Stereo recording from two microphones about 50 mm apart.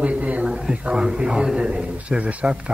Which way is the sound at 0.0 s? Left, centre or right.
Right.